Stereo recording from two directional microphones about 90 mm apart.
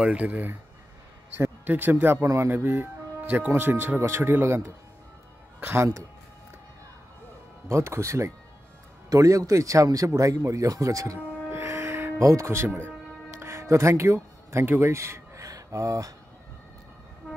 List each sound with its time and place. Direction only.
0.0 s speech: 15° right (ahead or behind)
1.6 s speech: 20° right (ahead or behind)
7.6 s speech: 30° right (ahead or behind)
11.5 s music: 30° right (ahead or behind)
13.4 s speech: 35° right (ahead or behind)